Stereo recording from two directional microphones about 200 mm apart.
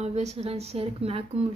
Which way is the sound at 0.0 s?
35° right (ahead or behind).